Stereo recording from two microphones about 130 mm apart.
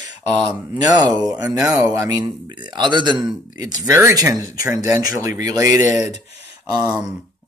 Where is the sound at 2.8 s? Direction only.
35° right (ahead or behind).